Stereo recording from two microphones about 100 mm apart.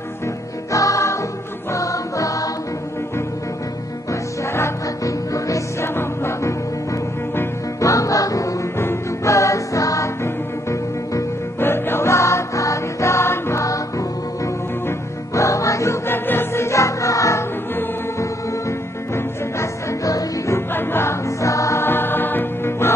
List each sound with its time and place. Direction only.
0.7 s music: 35° left (ahead or behind)
4.1 s music: 30° left (ahead or behind)
7.8 s music: 35° left (ahead or behind)